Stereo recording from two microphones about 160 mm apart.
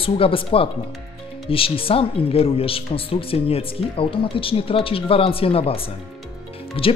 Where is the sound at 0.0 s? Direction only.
35° left (ahead or behind).